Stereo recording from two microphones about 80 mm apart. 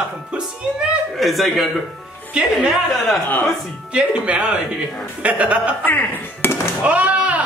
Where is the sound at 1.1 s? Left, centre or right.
Centre.